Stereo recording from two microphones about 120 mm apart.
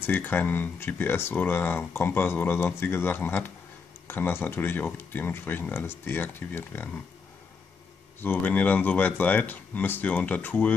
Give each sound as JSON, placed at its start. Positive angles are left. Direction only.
{"t": 0.0, "sound": "speech", "side_deg": 15}
{"t": 8.2, "sound": "speech", "side_deg": 15}